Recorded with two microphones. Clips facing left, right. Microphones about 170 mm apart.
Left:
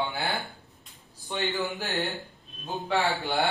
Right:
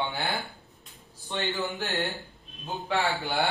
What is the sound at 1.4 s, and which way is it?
Speech, centre (ahead or behind).